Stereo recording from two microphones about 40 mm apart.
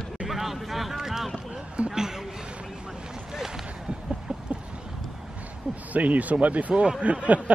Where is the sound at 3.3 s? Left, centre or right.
Centre.